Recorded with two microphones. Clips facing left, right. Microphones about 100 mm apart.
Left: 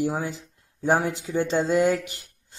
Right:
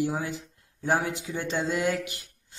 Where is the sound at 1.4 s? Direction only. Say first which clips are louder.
Left 7 dB; 35° left (ahead or behind).